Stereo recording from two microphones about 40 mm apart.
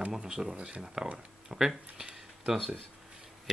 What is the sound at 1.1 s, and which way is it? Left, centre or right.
Speech, centre.